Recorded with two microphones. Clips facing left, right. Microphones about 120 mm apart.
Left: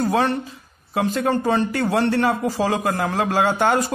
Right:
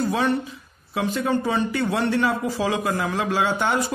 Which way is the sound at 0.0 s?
45° left (ahead or behind).